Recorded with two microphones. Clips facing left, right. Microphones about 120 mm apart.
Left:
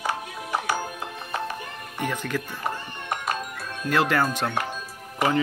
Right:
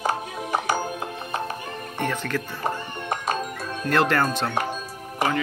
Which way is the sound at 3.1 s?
35° right (ahead or behind).